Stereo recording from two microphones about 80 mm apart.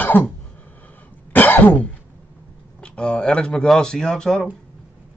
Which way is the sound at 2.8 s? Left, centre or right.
Centre.